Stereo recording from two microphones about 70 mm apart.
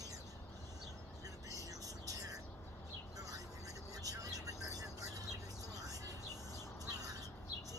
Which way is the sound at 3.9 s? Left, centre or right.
Right.